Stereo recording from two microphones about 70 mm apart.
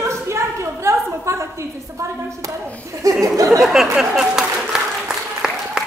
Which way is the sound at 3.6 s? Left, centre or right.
Centre.